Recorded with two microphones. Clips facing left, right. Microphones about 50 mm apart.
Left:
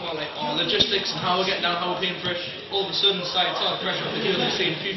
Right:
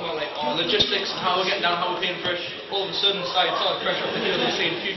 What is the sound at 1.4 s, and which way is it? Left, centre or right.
Speech, right.